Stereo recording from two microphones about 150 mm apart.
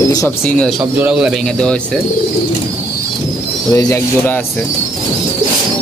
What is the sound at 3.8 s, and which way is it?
Speech, 20° left (ahead or behind).